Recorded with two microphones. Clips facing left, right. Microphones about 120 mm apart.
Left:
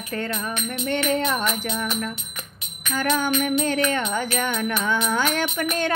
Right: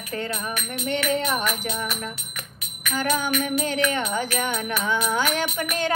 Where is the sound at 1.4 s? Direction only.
25° left (ahead or behind).